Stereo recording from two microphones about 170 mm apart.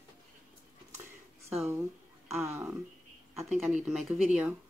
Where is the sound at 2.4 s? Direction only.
15° right (ahead or behind).